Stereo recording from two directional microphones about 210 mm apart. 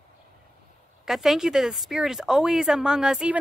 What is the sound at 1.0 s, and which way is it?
A woman's voice, centre (ahead or behind).